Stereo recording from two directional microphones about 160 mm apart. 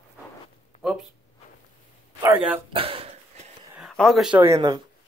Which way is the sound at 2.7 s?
35° right (ahead or behind).